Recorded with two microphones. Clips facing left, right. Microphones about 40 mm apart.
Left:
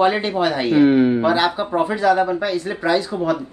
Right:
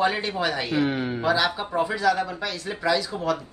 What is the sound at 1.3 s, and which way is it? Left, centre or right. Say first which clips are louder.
Speech: left 5 dB; left.